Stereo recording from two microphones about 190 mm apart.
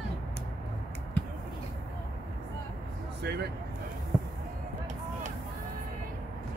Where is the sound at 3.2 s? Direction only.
60° right (ahead or behind).